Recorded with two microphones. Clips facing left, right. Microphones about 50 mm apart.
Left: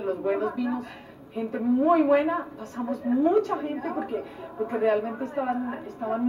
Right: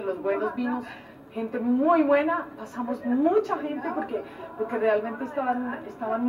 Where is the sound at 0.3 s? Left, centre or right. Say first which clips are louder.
Right 1 dB; centre.